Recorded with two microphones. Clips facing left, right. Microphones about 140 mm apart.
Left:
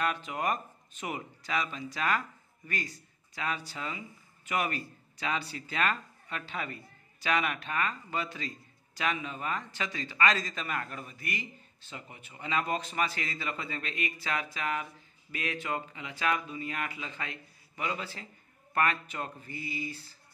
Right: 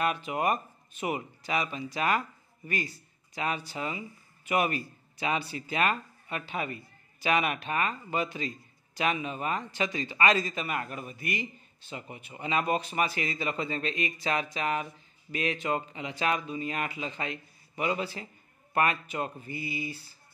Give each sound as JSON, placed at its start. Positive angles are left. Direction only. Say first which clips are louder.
{"t": 0.0, "sound": "speech", "louder": "right 3 dB", "side_deg": -15}
{"t": 3.3, "sound": "speech", "louder": "right 3 dB", "side_deg": -15}